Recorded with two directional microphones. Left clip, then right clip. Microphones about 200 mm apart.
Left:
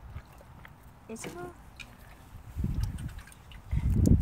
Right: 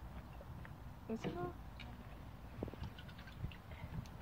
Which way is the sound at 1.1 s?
20° left (ahead or behind).